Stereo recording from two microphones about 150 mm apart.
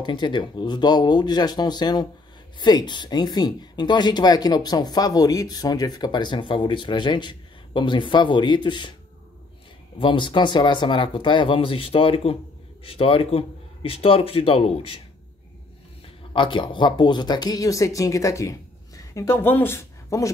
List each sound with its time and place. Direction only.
0.0 s speech: 30° left (ahead or behind)
9.9 s speech: 35° left (ahead or behind)
16.3 s speech: 35° left (ahead or behind)